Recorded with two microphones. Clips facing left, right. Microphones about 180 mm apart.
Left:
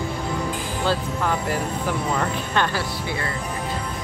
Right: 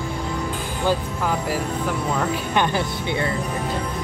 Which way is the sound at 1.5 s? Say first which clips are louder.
Right 1 dB; centre (ahead or behind).